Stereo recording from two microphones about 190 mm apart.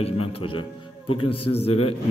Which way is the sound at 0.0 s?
30° left (ahead or behind).